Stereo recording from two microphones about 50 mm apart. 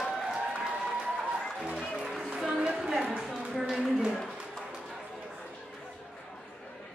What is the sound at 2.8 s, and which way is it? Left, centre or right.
Music, centre.